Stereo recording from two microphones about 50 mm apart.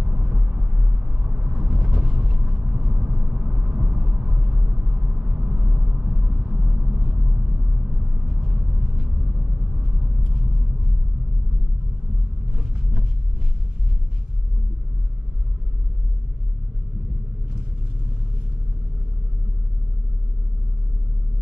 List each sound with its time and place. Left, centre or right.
0.0 s vehicle: centre
8.3 s vehicle: centre